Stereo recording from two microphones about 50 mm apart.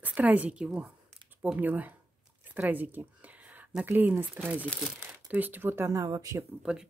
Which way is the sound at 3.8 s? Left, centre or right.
Right.